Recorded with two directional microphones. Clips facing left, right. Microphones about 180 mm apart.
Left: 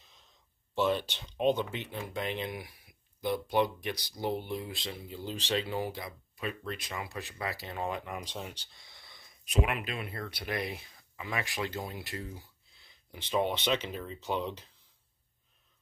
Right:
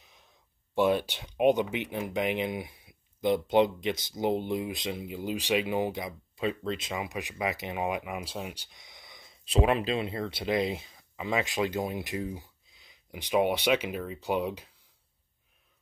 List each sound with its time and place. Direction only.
0.0 s gasp: 15° right (ahead or behind)
0.7 s speech: 10° right (ahead or behind)